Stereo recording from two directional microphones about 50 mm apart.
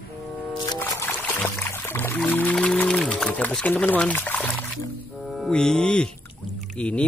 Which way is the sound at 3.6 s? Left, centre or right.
Left.